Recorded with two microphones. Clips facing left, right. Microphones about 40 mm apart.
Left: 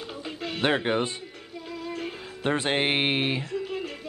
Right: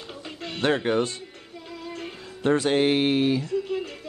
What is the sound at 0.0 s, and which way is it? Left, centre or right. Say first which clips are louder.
Music: left 2 dB; centre.